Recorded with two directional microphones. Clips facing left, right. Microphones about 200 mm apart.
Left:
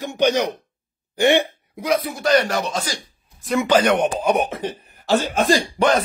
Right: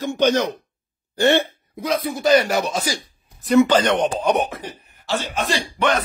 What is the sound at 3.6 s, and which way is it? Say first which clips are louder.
Speech: right 2 dB; 10° left (ahead or behind).